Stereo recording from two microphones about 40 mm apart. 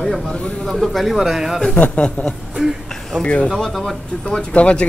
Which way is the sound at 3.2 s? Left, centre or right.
Left.